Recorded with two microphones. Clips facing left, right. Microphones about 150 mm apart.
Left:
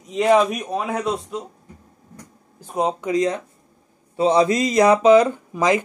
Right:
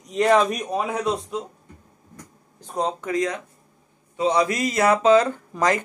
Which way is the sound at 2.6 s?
10° left (ahead or behind).